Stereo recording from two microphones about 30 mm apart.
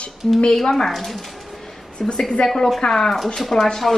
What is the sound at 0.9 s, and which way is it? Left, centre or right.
Speech, centre.